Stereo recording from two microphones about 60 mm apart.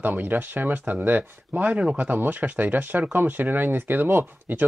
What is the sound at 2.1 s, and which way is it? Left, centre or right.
Speech, right.